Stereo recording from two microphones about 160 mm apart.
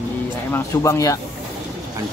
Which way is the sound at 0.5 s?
20° left (ahead or behind).